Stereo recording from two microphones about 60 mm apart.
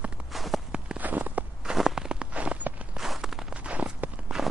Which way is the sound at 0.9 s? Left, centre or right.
Right.